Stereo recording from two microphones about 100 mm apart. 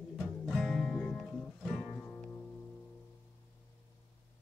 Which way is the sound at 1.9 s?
20° left (ahead or behind).